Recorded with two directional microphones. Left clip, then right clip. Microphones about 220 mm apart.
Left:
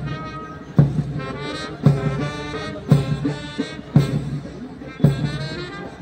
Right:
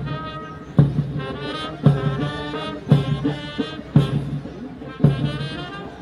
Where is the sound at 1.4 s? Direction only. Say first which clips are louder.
Right 1 dB; 25° left (ahead or behind).